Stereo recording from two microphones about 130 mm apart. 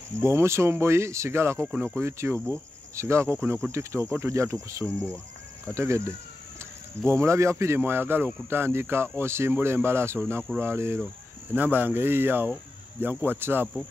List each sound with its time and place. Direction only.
0.2 s speech: 20° right (ahead or behind)